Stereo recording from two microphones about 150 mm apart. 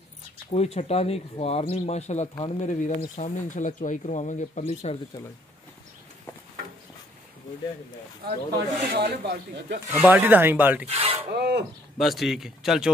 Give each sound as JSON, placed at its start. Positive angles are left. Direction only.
{"t": 0.5, "sound": "speech", "side_deg": 45}
{"t": 8.7, "sound": "speech", "side_deg": -85}
{"t": 9.8, "sound": "speech", "side_deg": -15}
{"t": 10.9, "sound": "speech", "side_deg": -40}
{"t": 11.3, "sound": "speech", "side_deg": -90}
{"t": 12.0, "sound": "speech", "side_deg": 0}